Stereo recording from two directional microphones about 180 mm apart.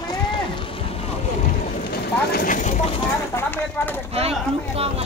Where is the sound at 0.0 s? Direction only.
25° left (ahead or behind).